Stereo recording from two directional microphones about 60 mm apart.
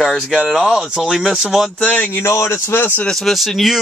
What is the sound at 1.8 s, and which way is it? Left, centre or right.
Speech, left.